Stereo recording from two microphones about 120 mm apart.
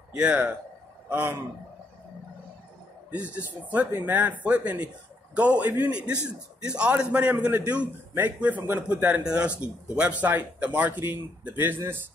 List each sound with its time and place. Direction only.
0.1 s a man's voice: 10° right (ahead or behind)
3.1 s a man's voice: 10° right (ahead or behind)